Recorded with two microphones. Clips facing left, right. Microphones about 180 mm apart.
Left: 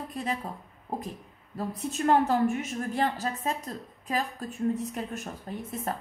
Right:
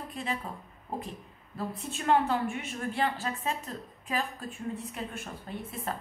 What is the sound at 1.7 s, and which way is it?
A woman's voice, 40° left (ahead or behind).